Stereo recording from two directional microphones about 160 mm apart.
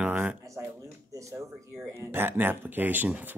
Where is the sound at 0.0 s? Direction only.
10° right (ahead or behind).